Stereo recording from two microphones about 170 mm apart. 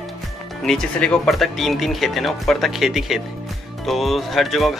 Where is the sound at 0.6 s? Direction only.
5° left (ahead or behind).